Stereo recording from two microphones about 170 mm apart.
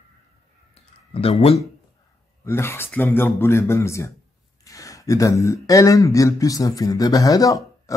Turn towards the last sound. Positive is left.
turn(degrees=20)  # may be behind; listen again after turning